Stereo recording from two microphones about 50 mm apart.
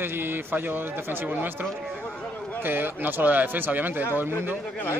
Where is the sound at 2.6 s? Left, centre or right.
Right.